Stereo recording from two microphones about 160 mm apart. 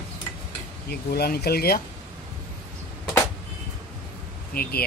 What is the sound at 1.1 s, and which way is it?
Speech, 80° left.